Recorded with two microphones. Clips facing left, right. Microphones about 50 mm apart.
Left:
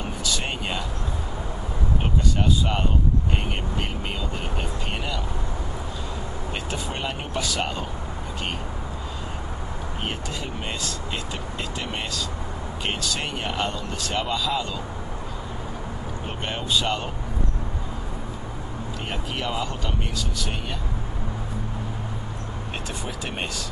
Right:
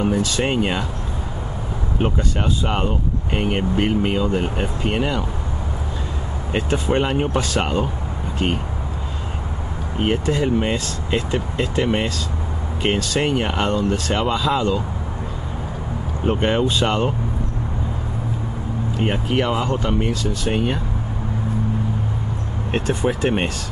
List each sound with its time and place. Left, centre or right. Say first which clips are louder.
0.1 s speech: right 9 dB; right
2.6 s speech: right 3 dB; right
6.5 s speech: right 12 dB; right
10.0 s speech: right 14 dB; right
14.2 s speech: right 7 dB; right
16.3 s speech: right 11 dB; right
18.9 s speech: right 11 dB; right
20.2 s speech: right 9 dB; right
22.7 s speech: right 14 dB; right